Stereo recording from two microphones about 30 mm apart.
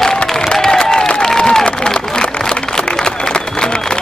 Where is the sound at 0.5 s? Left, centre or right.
Centre.